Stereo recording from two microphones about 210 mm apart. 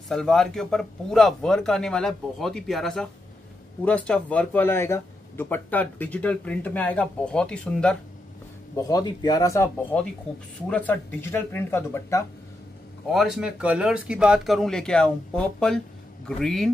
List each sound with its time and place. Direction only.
0.1 s speech: 5° left (ahead or behind)
8.7 s speech: 15° left (ahead or behind)
13.1 s speech: centre (ahead or behind)